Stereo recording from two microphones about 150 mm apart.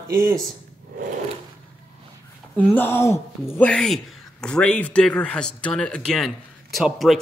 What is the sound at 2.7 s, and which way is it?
A man's voice, 15° left (ahead or behind).